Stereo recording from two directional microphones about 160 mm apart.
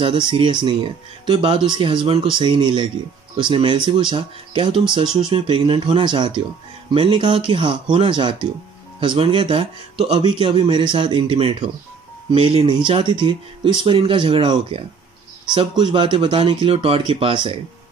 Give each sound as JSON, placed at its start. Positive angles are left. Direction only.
{"t": 0.0, "sound": "speech", "side_deg": -30}